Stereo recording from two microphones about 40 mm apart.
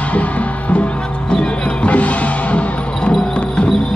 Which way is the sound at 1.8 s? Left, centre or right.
Left.